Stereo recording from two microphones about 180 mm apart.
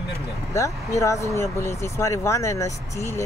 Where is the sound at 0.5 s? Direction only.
15° left (ahead or behind).